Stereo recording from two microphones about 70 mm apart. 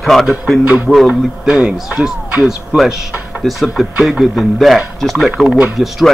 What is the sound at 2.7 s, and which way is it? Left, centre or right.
Speech, centre.